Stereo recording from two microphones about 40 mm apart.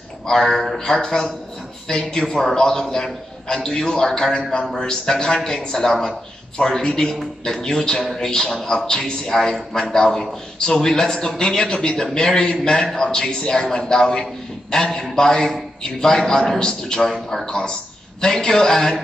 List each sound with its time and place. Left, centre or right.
0.3 s a man's voice: centre
17.1 s a man's voice: centre
17.5 s a man's voice: centre